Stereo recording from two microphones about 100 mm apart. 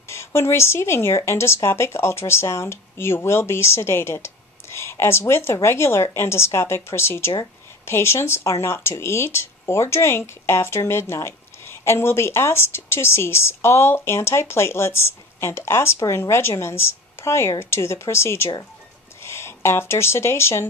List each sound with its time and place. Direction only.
0.1 s speech: 25° left (ahead or behind)